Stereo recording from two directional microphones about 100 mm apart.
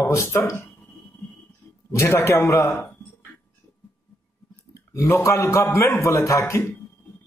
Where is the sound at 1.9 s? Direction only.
25° left (ahead or behind).